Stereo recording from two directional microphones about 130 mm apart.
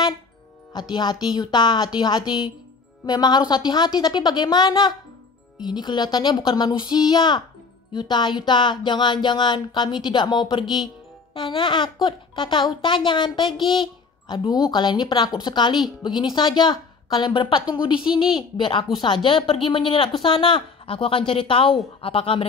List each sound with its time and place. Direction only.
0.7 s a child's voice: 30° left (ahead or behind)